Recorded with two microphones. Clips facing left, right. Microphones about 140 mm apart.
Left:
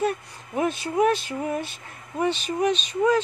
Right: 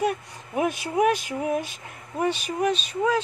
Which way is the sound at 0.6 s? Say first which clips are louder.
Left 1 dB; 10° right (ahead or behind).